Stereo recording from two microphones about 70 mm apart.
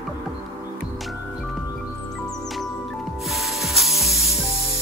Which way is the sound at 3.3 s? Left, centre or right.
Centre.